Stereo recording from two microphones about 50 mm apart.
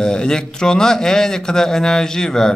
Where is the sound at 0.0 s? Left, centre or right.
Centre.